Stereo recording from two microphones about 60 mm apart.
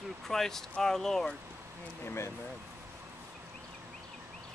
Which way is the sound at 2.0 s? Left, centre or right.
Left.